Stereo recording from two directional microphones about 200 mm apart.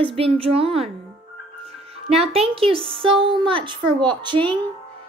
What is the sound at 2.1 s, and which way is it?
A woman's voice, 30° right (ahead or behind).